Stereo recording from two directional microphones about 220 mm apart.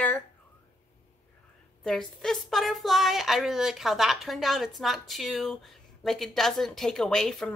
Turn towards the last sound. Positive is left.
turn(degrees=0)  # may be behind; listen again after turning